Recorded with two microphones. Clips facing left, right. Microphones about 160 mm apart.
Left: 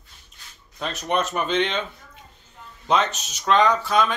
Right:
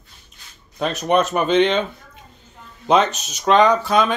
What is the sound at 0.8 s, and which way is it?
Speech, 65° right (ahead or behind).